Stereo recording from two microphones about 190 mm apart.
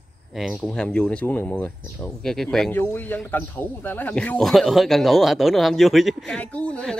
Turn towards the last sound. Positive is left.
turn(degrees=5)  # may be behind; listen again after turning